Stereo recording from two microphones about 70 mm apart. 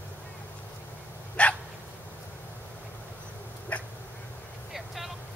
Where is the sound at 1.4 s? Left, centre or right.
Centre.